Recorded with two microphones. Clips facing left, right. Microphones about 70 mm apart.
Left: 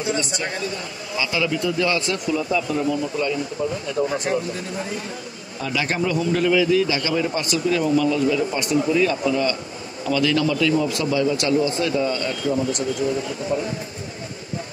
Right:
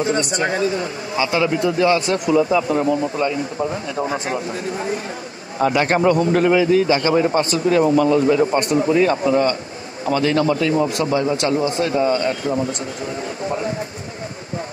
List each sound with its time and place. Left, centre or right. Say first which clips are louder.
0.0 s a man's voice: right 5 dB; right
2.1 s a man's voice: right 6 dB; right